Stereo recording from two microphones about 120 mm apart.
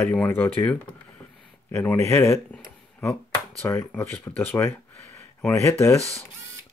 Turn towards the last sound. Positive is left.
turn(degrees=20)  # may be behind; listen again after turning